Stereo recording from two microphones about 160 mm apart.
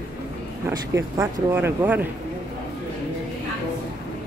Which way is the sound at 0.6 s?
15° right (ahead or behind).